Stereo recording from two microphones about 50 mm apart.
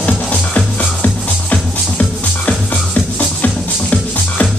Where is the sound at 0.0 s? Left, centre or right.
Left.